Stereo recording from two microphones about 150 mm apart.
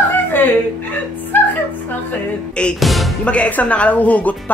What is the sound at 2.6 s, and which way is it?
Speech, 5° left (ahead or behind).